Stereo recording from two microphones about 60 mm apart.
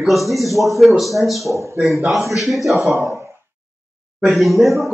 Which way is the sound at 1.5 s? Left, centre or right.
Right.